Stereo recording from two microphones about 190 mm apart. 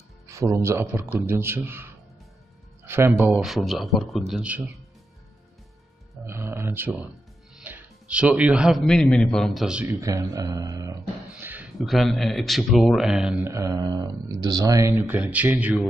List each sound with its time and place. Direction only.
0.3 s a man's voice: 15° right (ahead or behind)
6.2 s a man's voice: 15° right (ahead or behind)
9.9 s speech: 15° right (ahead or behind)
13.4 s a man's voice: 15° right (ahead or behind)